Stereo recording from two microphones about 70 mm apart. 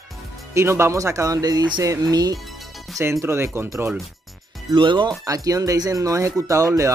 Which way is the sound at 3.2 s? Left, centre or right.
Right.